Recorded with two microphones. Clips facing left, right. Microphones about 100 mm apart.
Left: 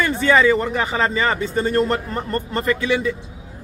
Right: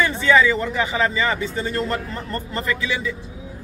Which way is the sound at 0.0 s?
50° left (ahead or behind).